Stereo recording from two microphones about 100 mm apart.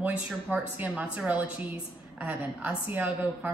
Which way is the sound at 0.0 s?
15° right (ahead or behind).